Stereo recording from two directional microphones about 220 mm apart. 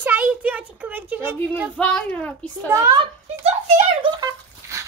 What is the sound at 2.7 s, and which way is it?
Speech, 15° right (ahead or behind).